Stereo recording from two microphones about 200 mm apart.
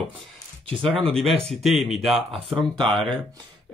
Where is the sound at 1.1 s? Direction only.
Centre (ahead or behind).